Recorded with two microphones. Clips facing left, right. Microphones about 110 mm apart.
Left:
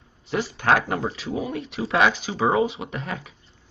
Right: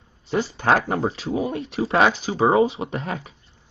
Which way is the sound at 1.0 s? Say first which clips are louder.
Right 4 dB; 30° right (ahead or behind).